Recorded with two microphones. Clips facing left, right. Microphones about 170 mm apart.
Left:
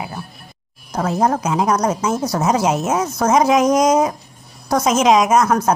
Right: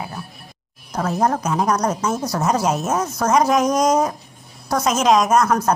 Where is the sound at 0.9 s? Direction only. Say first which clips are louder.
Left 2 dB; 25° left (ahead or behind).